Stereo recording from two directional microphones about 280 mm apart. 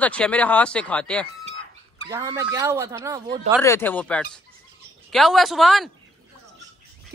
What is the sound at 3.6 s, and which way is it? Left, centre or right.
Speech, centre.